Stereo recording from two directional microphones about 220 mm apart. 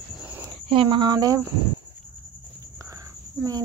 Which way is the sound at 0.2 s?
10° right (ahead or behind).